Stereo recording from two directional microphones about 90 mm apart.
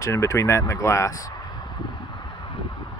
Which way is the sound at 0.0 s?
35° left (ahead or behind).